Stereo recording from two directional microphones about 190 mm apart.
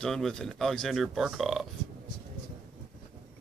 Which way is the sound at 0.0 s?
Centre (ahead or behind).